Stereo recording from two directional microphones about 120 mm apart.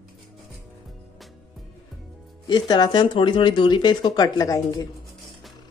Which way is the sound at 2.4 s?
35° left (ahead or behind).